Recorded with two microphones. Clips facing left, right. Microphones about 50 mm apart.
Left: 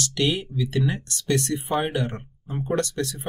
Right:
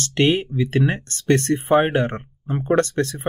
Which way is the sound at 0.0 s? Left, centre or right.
Right.